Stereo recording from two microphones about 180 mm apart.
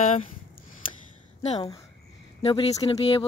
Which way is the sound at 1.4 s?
35° left (ahead or behind).